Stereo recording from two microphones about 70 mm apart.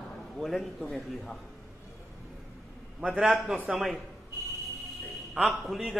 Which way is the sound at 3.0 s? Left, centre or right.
Centre.